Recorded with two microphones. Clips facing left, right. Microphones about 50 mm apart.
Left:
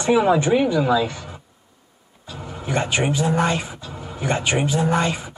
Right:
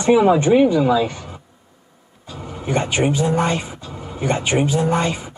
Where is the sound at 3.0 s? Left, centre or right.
Left.